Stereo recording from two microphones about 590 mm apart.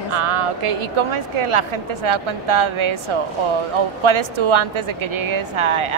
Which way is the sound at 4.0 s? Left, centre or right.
Right.